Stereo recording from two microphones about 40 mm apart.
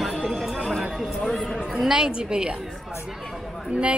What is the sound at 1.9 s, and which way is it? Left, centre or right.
Speech, centre.